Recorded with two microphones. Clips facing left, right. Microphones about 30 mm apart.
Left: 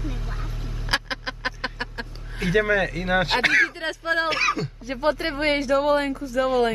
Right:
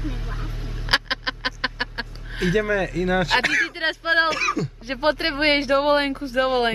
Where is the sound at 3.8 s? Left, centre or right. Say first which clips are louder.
Right 4 dB; right.